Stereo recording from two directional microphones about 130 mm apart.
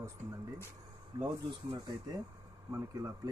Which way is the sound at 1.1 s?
30° right (ahead or behind).